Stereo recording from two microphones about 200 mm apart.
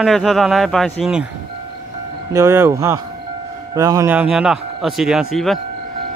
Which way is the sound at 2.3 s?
15° right (ahead or behind).